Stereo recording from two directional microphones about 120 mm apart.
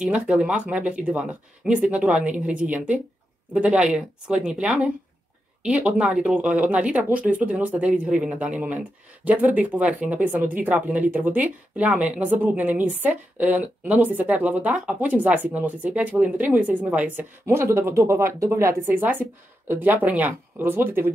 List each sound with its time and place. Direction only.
0.0 s speech: 10° right (ahead or behind)